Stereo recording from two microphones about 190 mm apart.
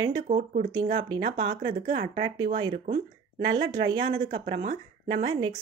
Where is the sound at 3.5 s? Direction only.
20° right (ahead or behind).